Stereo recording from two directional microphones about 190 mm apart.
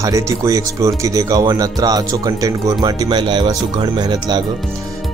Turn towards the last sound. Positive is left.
turn(degrees=-20)  # may be behind; listen again after turning